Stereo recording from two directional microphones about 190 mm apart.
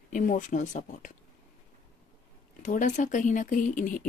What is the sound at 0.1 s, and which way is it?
Speech, 40° left (ahead or behind).